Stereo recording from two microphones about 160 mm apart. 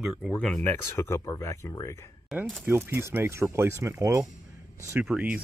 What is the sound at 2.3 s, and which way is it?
Speech, centre (ahead or behind).